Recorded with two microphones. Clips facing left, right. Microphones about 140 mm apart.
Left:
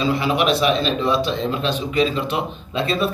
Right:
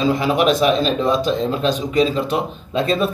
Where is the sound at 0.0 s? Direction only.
45° right (ahead or behind).